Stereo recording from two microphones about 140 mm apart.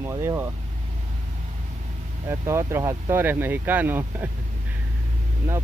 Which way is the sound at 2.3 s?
20° right (ahead or behind).